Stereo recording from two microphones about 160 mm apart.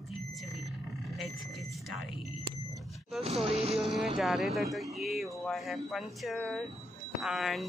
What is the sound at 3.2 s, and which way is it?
Speech, 40° right (ahead or behind).